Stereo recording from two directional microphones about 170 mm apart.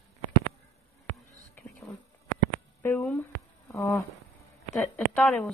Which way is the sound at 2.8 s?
15° left (ahead or behind).